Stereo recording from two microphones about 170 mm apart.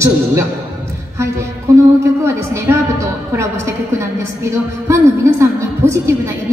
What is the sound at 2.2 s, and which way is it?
A man's voice, 15° right (ahead or behind).